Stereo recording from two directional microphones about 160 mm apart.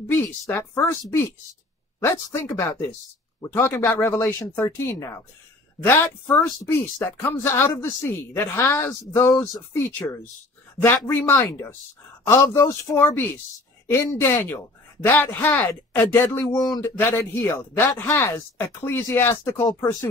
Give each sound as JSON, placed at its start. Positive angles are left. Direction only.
{"t": 0.1, "sound": "a woman's voice", "side_deg": 15}